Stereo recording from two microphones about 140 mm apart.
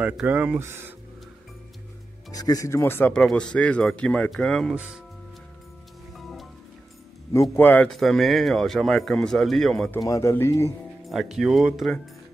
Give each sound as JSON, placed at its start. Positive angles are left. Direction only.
{"t": 0.0, "sound": "speech", "side_deg": -10}
{"t": 2.3, "sound": "speech", "side_deg": 25}
{"t": 3.2, "sound": "speech", "side_deg": 5}
{"t": 6.1, "sound": "music", "side_deg": 0}
{"t": 7.5, "sound": "speech", "side_deg": 15}
{"t": 9.9, "sound": "speech", "side_deg": 25}
{"t": 11.1, "sound": "speech", "side_deg": 0}